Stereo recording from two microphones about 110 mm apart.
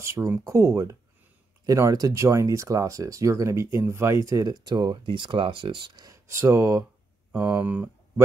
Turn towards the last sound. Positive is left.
turn(degrees=-15)  # may be behind; listen again after turning